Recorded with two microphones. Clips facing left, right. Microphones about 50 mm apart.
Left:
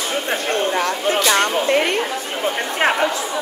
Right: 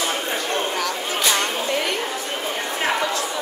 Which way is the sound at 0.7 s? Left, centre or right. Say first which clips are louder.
Left 6 dB; left.